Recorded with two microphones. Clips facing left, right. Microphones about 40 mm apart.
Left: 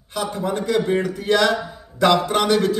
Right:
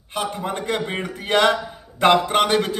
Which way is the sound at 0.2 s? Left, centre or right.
Right.